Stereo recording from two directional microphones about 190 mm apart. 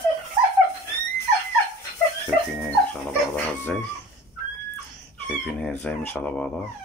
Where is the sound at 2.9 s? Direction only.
10° left (ahead or behind).